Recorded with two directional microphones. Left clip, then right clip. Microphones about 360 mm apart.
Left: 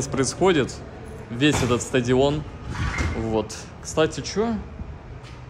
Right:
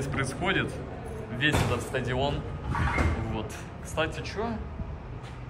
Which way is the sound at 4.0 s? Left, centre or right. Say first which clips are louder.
Left 8 dB; centre.